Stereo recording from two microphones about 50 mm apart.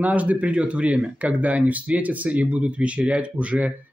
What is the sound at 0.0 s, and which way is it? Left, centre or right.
Speech, right.